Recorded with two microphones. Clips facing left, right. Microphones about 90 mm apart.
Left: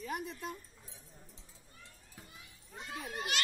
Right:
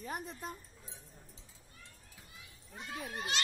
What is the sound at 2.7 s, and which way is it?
Children playing, 20° left (ahead or behind).